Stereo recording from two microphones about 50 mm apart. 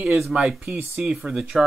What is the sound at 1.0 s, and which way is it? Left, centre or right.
Speech, right.